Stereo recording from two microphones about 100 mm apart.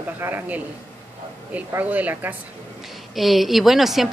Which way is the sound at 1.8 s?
15° right (ahead or behind).